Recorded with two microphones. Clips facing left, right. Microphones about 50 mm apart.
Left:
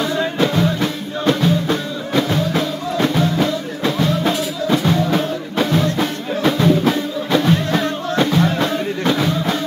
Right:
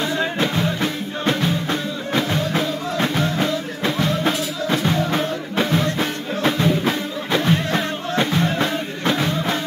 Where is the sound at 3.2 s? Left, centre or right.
Right.